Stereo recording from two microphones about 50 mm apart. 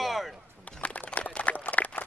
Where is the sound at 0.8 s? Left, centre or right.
Left.